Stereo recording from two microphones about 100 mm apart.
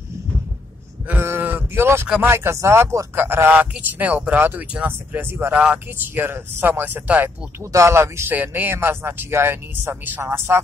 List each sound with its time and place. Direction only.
1.0 s sheep: 25° right (ahead or behind)
2.2 s speech: 25° right (ahead or behind)
6.2 s speech: 25° right (ahead or behind)
7.6 s speech: 30° right (ahead or behind)